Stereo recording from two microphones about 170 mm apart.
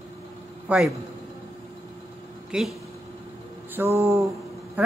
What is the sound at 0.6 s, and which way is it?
Speech, 5° right (ahead or behind).